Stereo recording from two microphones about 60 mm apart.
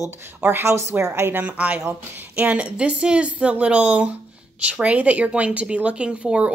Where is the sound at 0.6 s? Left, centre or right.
Right.